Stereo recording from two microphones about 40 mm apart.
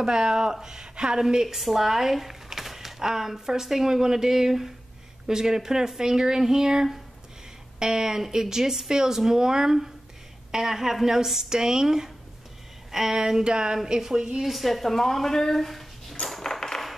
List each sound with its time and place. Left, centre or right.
0.0 s a woman's voice: centre
14.4 s speech: centre
16.3 s a sound: centre